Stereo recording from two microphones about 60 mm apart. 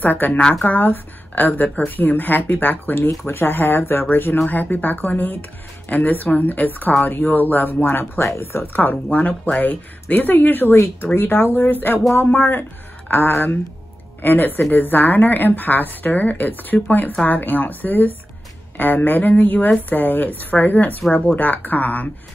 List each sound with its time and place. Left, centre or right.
0.0 s a woman's voice: left
0.4 s speech: centre
0.7 s a woman's voice: left